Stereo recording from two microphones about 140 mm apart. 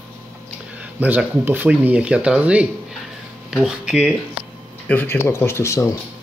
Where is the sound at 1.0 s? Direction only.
10° right (ahead or behind).